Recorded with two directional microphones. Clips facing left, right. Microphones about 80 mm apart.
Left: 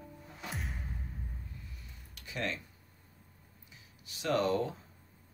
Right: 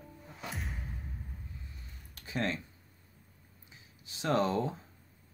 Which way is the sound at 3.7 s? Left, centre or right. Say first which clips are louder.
Right 1 dB; right.